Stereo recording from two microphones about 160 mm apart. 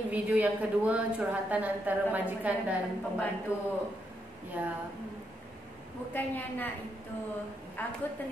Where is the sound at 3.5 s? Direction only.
15° left (ahead or behind).